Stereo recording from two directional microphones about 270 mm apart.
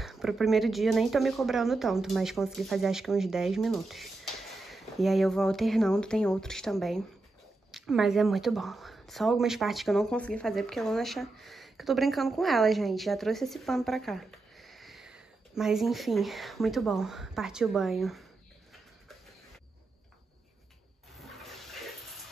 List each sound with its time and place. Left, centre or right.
0.0 s speech: centre
21.2 s toilet flush: centre